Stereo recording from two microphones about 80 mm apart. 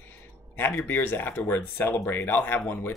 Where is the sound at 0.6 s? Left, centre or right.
Left.